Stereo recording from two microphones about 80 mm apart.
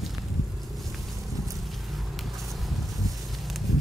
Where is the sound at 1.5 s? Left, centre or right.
Centre.